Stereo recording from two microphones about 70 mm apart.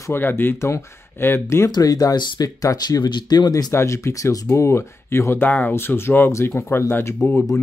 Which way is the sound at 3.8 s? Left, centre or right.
Left.